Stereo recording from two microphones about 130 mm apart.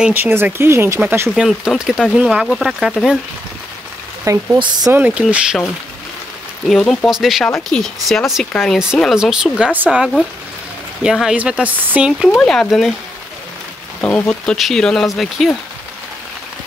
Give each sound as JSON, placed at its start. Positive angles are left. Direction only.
{"t": 0.0, "sound": "speech", "side_deg": -15}
{"t": 1.3, "sound": "speech", "side_deg": -5}
{"t": 4.2, "sound": "speech", "side_deg": -20}
{"t": 4.6, "sound": "speech", "side_deg": -35}
{"t": 4.9, "sound": "speech", "side_deg": -10}
{"t": 6.7, "sound": "speech", "side_deg": 5}
{"t": 12.4, "sound": "speech", "side_deg": 5}
{"t": 14.0, "sound": "speech", "side_deg": 10}